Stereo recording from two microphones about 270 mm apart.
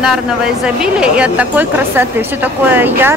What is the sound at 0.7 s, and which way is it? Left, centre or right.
A woman's voice, centre.